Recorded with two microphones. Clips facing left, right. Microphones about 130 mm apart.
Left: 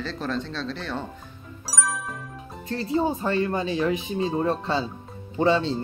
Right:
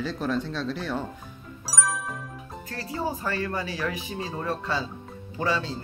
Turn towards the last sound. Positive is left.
turn(degrees=25)  # may be behind; listen again after turning